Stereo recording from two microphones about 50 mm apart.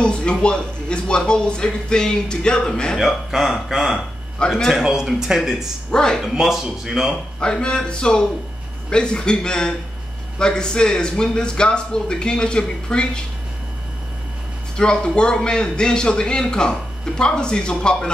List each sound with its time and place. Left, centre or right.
0.0 s a man's voice: centre
3.0 s a man's voice: centre
5.9 s speech: centre
6.2 s a man's voice: centre
7.3 s a man's voice: centre
14.8 s a man's voice: centre